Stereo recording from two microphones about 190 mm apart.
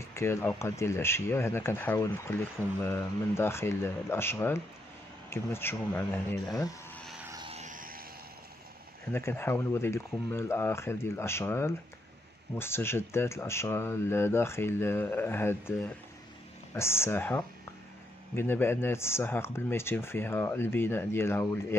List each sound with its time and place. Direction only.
0.0 s speech: 15° left (ahead or behind)
7.2 s vehicle: 20° right (ahead or behind)
7.5 s music: 40° right (ahead or behind)
9.1 s speech: 10° left (ahead or behind)